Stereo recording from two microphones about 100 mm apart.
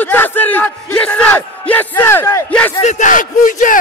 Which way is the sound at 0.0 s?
20° left (ahead or behind).